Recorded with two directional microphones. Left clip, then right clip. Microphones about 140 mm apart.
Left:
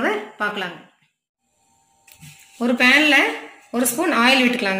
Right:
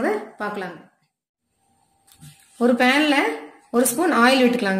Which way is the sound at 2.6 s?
90° right.